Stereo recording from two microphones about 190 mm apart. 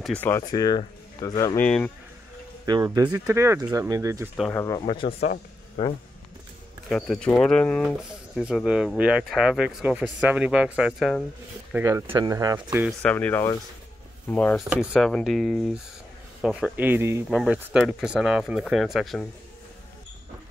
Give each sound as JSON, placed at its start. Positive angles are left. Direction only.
{"t": 0.0, "sound": "speech", "side_deg": 10}
{"t": 2.6, "sound": "speech", "side_deg": -20}
{"t": 4.5, "sound": "speech", "side_deg": 15}
{"t": 4.7, "sound": "speech", "side_deg": 25}
{"t": 6.9, "sound": "speech", "side_deg": 5}
{"t": 11.7, "sound": "speech", "side_deg": -15}
{"t": 13.0, "sound": "speech", "side_deg": 10}
{"t": 14.7, "sound": "speech", "side_deg": -5}